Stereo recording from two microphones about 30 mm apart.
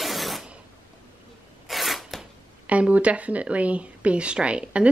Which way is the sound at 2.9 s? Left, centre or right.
Right.